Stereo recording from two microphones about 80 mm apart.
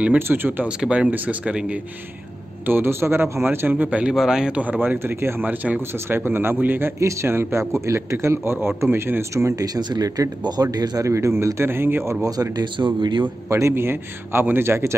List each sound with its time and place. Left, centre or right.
0.3 s speech: right
0.7 s speech: centre
2.6 s speech: right
3.7 s speech: centre
7.0 s speech: right
9.8 s speech: right
12.2 s speech: right
12.7 s speech: right
13.5 s speech: right